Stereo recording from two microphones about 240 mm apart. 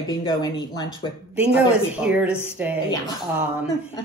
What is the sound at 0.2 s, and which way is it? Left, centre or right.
Speech, centre.